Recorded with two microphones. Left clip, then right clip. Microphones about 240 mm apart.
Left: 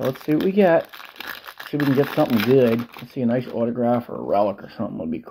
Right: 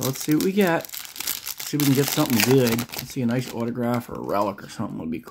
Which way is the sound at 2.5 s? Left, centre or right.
Right.